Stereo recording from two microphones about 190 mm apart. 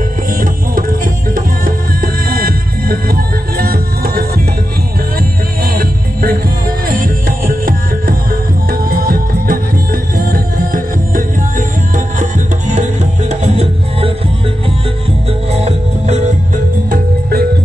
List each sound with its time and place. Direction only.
0.3 s music: 45° right (ahead or behind)
5.7 s music: 50° right (ahead or behind)
15.6 s music: 35° right (ahead or behind)
16.9 s music: 55° right (ahead or behind)